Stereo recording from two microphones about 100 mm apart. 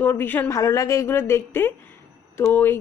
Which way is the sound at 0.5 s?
30° left (ahead or behind).